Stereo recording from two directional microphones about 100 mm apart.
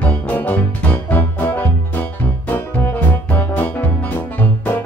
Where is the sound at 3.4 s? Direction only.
20° left (ahead or behind).